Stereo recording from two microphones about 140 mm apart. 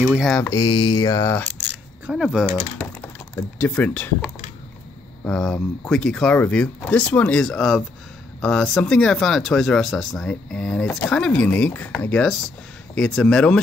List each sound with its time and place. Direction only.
0.0 s mantra: 10° right (ahead or behind)
0.5 s speech: 30° left (ahead or behind)
2.0 s speech: 5° right (ahead or behind)
2.8 s speech: 15° left (ahead or behind)
5.2 s speech: 5° left (ahead or behind)